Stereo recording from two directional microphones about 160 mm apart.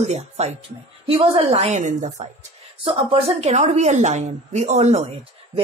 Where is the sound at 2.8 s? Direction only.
35° right (ahead or behind).